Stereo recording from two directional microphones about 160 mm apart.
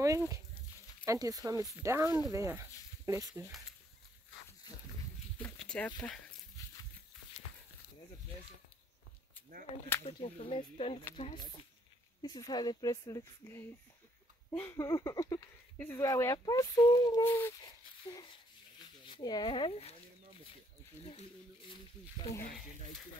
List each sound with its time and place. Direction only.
0.0 s speech: 20° right (ahead or behind)
4.7 s dog: 25° left (ahead or behind)
5.4 s a sound: 5° left (ahead or behind)
5.9 s speech: 25° left (ahead or behind)
6.6 s a sound: 20° left (ahead or behind)
10.0 s speech: 40° left (ahead or behind)
12.2 s speech: 25° left (ahead or behind)
18.0 s speech: 30° left (ahead or behind)
21.0 s speech: 40° left (ahead or behind)